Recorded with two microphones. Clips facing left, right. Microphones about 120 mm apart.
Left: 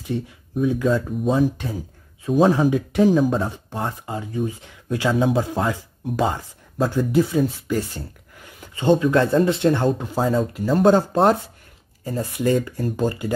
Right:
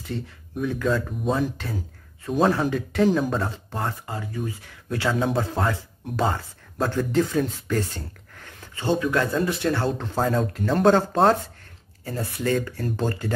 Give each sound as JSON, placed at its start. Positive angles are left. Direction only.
{"t": 0.6, "sound": "speech", "side_deg": 10}
{"t": 2.2, "sound": "a man's voice", "side_deg": 5}
{"t": 2.5, "sound": "speech", "side_deg": 15}
{"t": 9.9, "sound": "speech", "side_deg": 10}